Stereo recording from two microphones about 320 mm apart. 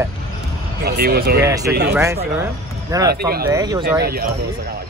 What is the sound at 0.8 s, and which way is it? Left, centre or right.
Speech, right.